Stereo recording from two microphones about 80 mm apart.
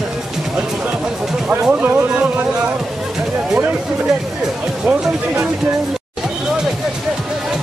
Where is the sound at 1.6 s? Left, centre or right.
Centre.